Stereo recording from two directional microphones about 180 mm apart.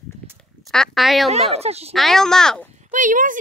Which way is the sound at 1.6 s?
35° right (ahead or behind).